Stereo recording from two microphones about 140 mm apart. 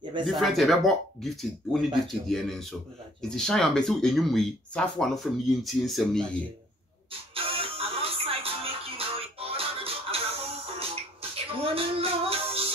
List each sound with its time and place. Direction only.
0.2 s speech: centre (ahead or behind)
7.1 s music: 40° right (ahead or behind)
11.3 s female singing: 40° right (ahead or behind)